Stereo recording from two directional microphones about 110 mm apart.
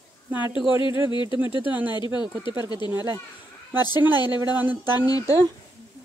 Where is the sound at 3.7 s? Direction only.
40° left (ahead or behind).